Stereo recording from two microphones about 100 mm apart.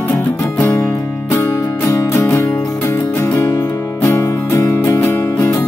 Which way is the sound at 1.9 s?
25° left (ahead or behind).